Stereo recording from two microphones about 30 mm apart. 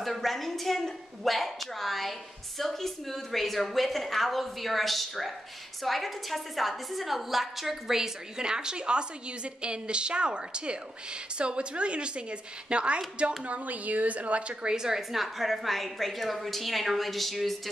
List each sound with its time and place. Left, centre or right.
0.0 s a woman's voice: centre
7.9 s a woman's voice: centre
8.5 s a woman's voice: right
13.5 s a woman's voice: right
14.7 s a woman's voice: right
15.0 s a woman's voice: centre